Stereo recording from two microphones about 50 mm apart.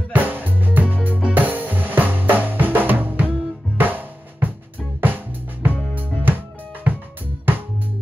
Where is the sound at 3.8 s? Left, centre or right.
Right.